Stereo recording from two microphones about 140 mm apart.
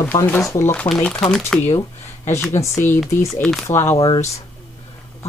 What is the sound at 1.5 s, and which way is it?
Speech, 5° left (ahead or behind).